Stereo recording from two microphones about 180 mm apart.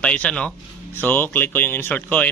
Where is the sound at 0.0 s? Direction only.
5° left (ahead or behind).